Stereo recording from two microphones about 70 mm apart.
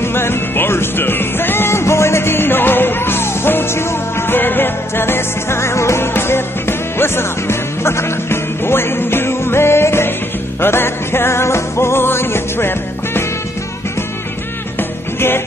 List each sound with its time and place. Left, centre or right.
0.0 s music: left
14.8 s music: left